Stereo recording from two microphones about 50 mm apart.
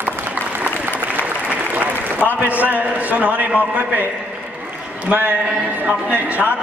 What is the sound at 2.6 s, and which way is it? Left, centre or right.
A man's voice, right.